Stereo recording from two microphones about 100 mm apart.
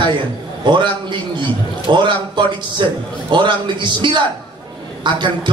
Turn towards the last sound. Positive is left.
turn(degrees=-55)  # may be behind; listen again after turning